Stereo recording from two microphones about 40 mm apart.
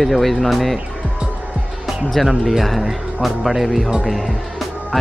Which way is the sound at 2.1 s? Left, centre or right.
Centre.